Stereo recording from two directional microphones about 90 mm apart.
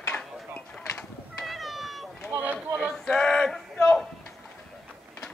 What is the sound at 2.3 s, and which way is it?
Run, 20° right (ahead or behind).